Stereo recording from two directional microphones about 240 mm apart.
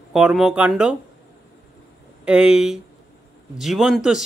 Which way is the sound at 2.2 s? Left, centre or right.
Centre.